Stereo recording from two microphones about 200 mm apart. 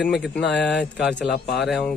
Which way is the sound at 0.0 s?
Centre (ahead or behind).